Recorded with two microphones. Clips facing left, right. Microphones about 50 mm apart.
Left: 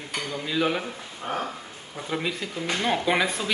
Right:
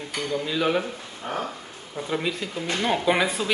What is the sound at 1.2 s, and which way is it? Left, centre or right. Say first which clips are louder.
Dishes: even; centre.